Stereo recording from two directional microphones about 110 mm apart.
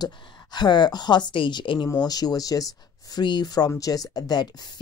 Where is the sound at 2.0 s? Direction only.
35° left (ahead or behind).